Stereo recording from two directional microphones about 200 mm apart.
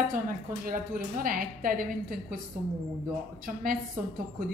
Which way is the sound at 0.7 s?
45° right (ahead or behind).